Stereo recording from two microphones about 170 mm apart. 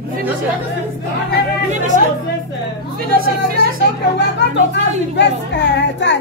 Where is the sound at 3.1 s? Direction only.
60° right (ahead or behind).